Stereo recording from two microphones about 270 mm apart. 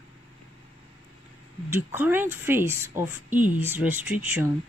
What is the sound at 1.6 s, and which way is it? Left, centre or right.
A woman's voice, centre.